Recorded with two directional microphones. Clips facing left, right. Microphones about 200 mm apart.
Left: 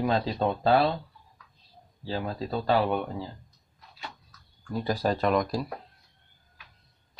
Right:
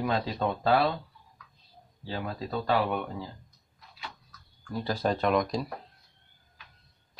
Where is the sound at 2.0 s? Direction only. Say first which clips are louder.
Left 3 dB; 30° left (ahead or behind).